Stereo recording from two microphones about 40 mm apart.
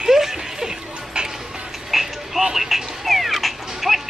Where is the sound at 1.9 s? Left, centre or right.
Centre.